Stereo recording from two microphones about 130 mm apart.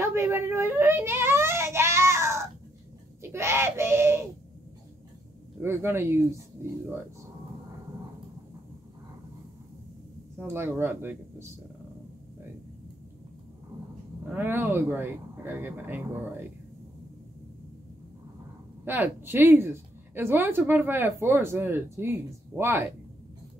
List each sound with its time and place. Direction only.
0.0 s whimper: 20° right (ahead or behind)
3.2 s a sound: 20° right (ahead or behind)
5.6 s speech: 20° right (ahead or behind)
10.4 s speech: 15° right (ahead or behind)
14.3 s speech: 15° right (ahead or behind)
18.9 s speech: 15° right (ahead or behind)